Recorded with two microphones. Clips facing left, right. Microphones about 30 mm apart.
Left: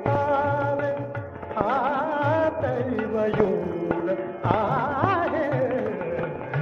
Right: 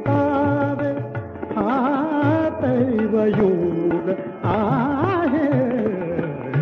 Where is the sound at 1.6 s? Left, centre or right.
Centre.